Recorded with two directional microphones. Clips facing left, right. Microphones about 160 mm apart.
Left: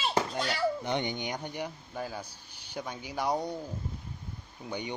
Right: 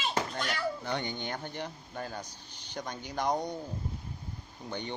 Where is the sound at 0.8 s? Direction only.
20° left (ahead or behind).